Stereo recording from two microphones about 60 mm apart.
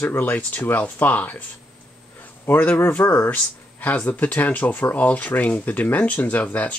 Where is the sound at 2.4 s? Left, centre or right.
Left.